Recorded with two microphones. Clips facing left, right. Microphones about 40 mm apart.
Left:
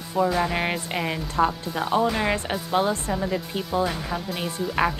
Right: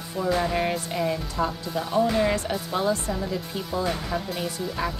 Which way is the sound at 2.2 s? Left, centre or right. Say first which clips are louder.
Right 1 dB; left.